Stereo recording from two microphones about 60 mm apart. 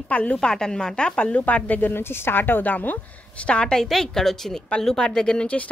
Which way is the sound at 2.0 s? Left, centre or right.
Left.